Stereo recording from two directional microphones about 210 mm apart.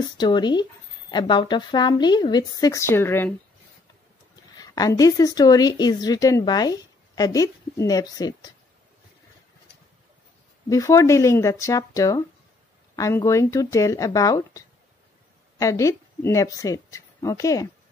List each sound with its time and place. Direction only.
0.2 s speech: 20° left (ahead or behind)
4.6 s speech: 15° left (ahead or behind)
10.7 s speech: 15° left (ahead or behind)